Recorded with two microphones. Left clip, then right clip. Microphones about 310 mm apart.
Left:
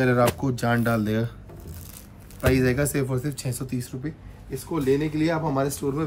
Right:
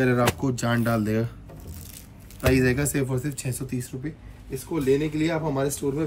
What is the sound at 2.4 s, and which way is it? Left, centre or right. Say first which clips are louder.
Speech: even; centre.